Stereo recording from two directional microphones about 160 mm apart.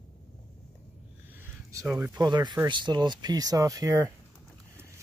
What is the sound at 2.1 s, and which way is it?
Speech, 25° right (ahead or behind).